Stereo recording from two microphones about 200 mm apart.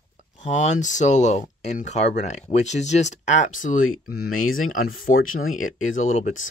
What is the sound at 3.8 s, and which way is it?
Speech, 90° left.